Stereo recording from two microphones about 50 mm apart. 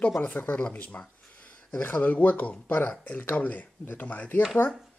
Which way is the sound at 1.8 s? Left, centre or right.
Left.